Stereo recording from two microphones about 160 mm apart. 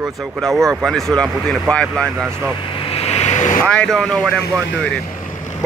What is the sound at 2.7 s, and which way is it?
Vehicle, 35° left (ahead or behind).